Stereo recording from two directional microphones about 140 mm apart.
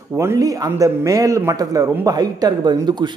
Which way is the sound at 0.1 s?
20° right (ahead or behind).